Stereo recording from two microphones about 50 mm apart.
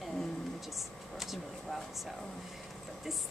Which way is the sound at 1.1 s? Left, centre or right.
Centre.